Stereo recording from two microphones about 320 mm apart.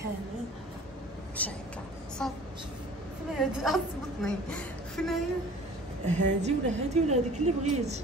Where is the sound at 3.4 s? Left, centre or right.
Centre.